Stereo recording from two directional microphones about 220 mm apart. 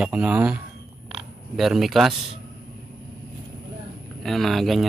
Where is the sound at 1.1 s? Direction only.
Centre (ahead or behind).